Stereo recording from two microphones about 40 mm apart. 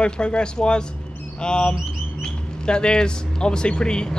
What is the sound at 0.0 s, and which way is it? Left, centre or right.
Speech, left.